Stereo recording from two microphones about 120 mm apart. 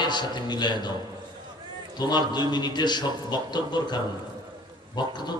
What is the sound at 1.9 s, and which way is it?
A man's voice, 35° left (ahead or behind).